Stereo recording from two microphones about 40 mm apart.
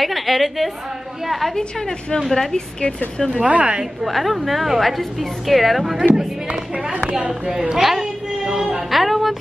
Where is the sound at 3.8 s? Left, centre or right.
Centre.